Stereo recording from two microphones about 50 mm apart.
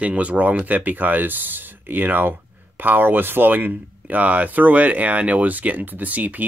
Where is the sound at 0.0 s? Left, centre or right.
Right.